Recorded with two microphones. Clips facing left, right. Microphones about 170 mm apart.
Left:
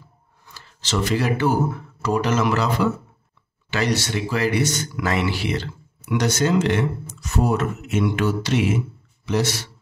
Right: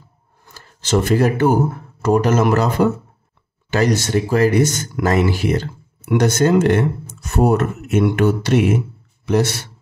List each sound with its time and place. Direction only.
0.5 s speech: 50° right (ahead or behind)